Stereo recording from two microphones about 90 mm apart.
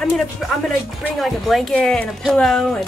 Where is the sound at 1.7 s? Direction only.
10° left (ahead or behind).